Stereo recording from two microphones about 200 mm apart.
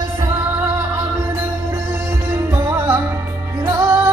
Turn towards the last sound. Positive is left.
turn(degrees=-15)  # may be behind; listen again after turning